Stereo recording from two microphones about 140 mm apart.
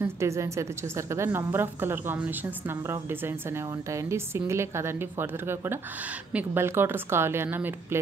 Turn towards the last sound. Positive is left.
turn(degrees=-15)  # may be behind; listen again after turning